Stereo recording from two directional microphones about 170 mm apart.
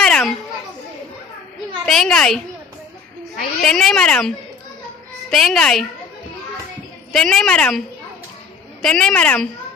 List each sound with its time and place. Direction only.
0.0 s children playing: 5° left (ahead or behind)
1.9 s a woman's voice: 5° left (ahead or behind)
3.6 s a woman's voice: 5° left (ahead or behind)
5.3 s a woman's voice: 5° left (ahead or behind)
7.1 s a woman's voice: 5° left (ahead or behind)
8.8 s a woman's voice: 5° left (ahead or behind)